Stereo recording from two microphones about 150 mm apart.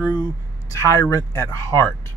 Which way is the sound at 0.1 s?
25° left (ahead or behind).